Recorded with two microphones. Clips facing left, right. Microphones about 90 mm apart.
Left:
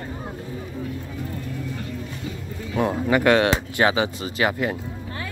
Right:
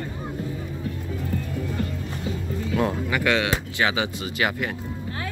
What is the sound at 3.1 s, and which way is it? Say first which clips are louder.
Speech: left 5 dB; 35° left (ahead or behind).